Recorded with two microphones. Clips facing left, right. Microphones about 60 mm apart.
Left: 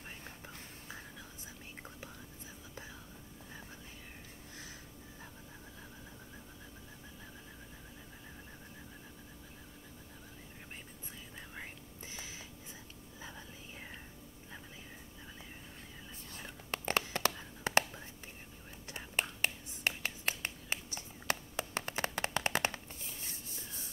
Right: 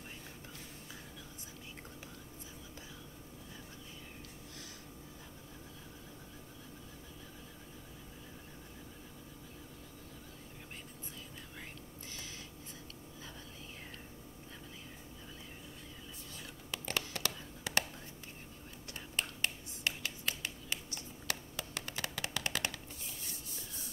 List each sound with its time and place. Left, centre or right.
16.3 s whispering: left
18.9 s finger snapping: left
21.3 s hands: left